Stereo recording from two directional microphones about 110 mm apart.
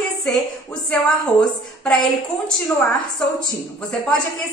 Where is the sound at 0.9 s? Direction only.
10° left (ahead or behind).